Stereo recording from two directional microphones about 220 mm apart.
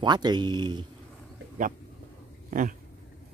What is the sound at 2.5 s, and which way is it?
Speech, 40° right (ahead or behind).